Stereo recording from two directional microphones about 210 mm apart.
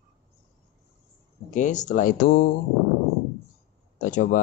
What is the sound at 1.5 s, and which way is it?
Speech, 35° left (ahead or behind).